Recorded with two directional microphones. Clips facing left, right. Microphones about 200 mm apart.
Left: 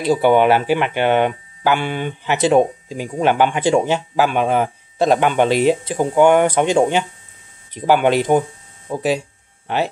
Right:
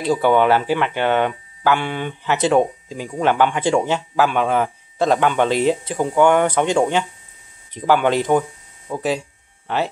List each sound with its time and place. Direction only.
0.0 s speech: 10° left (ahead or behind)
8.3 s hum: 25° left (ahead or behind)
8.9 s speech: 15° left (ahead or behind)